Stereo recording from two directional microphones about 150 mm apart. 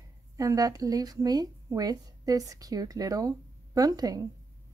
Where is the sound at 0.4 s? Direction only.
25° right (ahead or behind).